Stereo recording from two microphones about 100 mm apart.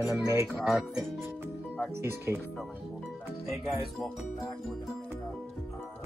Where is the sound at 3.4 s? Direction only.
Centre (ahead or behind).